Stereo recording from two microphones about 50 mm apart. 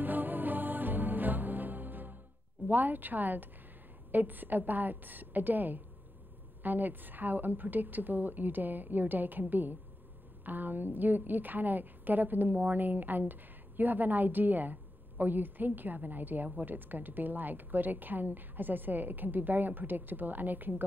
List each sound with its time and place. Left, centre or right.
0.0 s music: right
2.7 s a woman's voice: right